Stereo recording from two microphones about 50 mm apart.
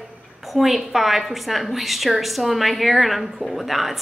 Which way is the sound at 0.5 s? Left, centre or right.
Centre.